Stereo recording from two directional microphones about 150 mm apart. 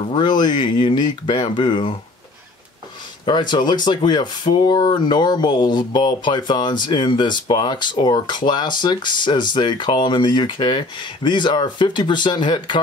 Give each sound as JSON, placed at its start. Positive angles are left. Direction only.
{"t": 0.1, "sound": "speech", "side_deg": 30}
{"t": 3.3, "sound": "speech", "side_deg": 30}